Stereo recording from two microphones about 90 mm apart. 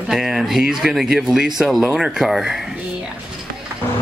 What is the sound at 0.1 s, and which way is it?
Speech, 5° right (ahead or behind).